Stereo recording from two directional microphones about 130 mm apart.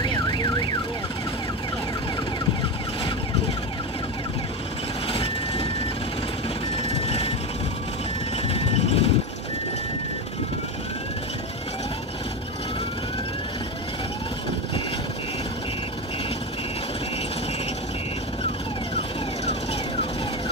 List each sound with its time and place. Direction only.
0.0 s car alarm: 35° left (ahead or behind)
5.0 s vehicle: 50° left (ahead or behind)
8.5 s vehicle: 50° left (ahead or behind)